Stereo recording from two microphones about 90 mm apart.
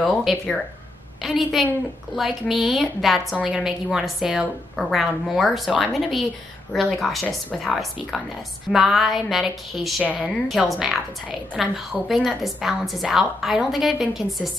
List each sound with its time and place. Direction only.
0.0 s a woman's voice: centre (ahead or behind)